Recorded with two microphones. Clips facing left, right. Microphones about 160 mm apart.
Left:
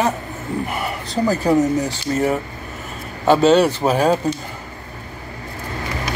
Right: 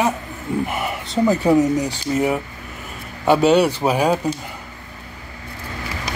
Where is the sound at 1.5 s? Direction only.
5° right (ahead or behind).